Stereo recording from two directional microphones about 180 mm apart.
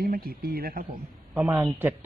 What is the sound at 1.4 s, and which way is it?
Speech, 10° right (ahead or behind).